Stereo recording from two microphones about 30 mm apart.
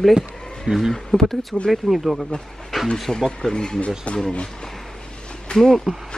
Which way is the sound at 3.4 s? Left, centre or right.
Left.